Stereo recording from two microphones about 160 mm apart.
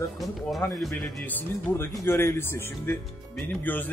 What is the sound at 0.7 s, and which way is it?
Speech, centre (ahead or behind).